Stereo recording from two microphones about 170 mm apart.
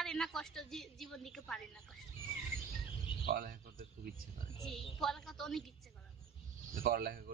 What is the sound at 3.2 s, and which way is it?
Speech, 55° right (ahead or behind).